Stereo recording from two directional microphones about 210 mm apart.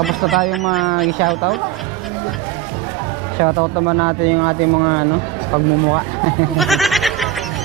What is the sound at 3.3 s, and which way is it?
Speech, 20° right (ahead or behind).